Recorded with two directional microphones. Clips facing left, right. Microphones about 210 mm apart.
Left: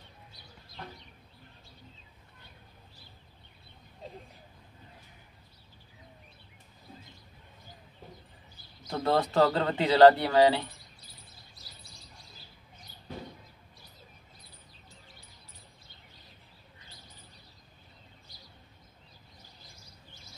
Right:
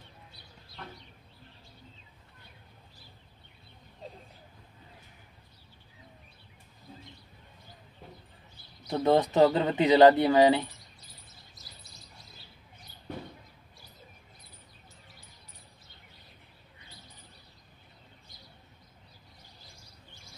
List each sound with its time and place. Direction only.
8.9 s speech: 20° right (ahead or behind)